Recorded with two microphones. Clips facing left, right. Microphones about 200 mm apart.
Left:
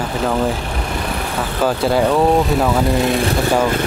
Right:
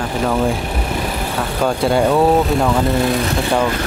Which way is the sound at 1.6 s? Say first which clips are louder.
Even; centre (ahead or behind).